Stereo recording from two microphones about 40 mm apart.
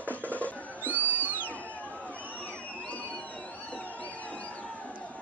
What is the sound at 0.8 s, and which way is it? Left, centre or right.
Music, right.